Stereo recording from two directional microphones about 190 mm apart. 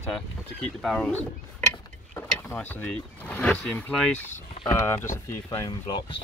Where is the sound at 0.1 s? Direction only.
5° left (ahead or behind).